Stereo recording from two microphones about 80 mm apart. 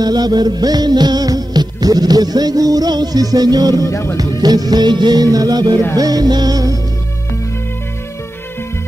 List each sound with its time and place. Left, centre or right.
0.0 s music: right
3.9 s music: left
4.4 s music: right